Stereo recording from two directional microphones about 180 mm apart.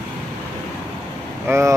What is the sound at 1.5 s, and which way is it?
Speech, 15° right (ahead or behind).